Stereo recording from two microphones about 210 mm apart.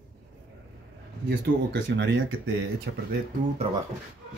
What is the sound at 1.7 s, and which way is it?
Speech, 60° right (ahead or behind).